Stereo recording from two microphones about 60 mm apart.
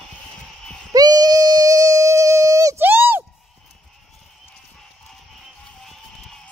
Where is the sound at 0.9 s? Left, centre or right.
Right.